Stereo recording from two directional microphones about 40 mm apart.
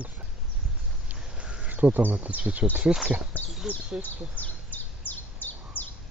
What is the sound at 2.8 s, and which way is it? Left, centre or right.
Speech, centre.